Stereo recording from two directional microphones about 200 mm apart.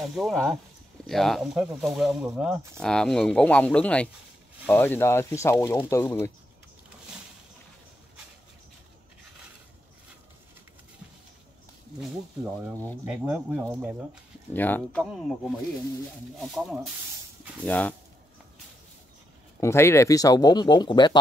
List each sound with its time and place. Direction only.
0.0 s speech: centre (ahead or behind)
13.0 s speech: 10° right (ahead or behind)
14.5 s speech: 10° left (ahead or behind)
16.5 s speech: centre (ahead or behind)
19.6 s speech: 15° left (ahead or behind)